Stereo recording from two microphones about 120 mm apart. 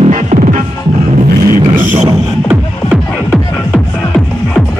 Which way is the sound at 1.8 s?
90° right.